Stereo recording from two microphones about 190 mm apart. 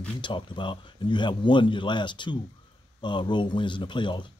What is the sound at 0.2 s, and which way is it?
Speech, 25° left (ahead or behind).